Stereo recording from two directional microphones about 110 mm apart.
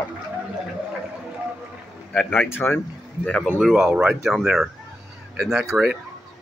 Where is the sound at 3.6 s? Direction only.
5° right (ahead or behind).